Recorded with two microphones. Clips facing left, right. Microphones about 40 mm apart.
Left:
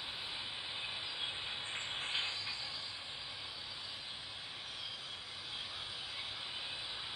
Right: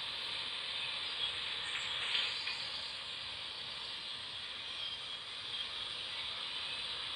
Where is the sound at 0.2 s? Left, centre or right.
Right.